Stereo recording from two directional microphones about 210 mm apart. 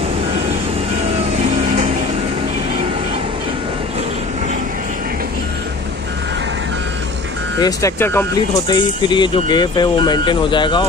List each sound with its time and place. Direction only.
7.6 s speech: 15° left (ahead or behind)
9.1 s speech: 20° left (ahead or behind)